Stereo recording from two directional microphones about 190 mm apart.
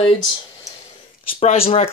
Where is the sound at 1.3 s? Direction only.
30° left (ahead or behind).